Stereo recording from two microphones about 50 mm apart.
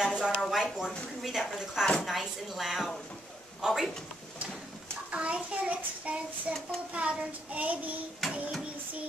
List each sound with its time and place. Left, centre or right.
0.0 s a sound: centre
0.5 s speech: centre
5.1 s child singing: right
8.2 s speech: centre